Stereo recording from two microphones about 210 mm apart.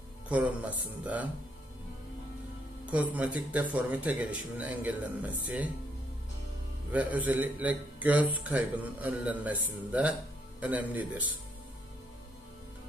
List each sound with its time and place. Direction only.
0.3 s a man's voice: 5° right (ahead or behind)
2.8 s a man's voice: 5° right (ahead or behind)
6.9 s a man's voice: 5° right (ahead or behind)